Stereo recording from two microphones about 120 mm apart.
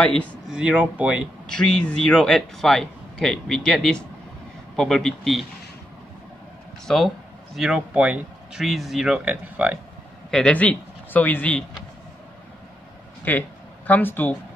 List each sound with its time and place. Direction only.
0.0 s speech: 10° left (ahead or behind)
0.5 s speech: 10° right (ahead or behind)
1.5 s a man's voice: 5° left (ahead or behind)
6.9 s a man's voice: centre (ahead or behind)
8.6 s speech: centre (ahead or behind)
10.3 s speech: 10° left (ahead or behind)
13.3 s speech: 15° left (ahead or behind)